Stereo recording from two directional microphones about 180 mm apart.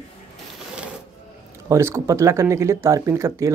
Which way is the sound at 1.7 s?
15° right (ahead or behind).